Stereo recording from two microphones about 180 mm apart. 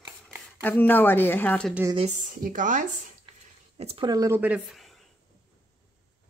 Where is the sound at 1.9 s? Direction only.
40° right (ahead or behind).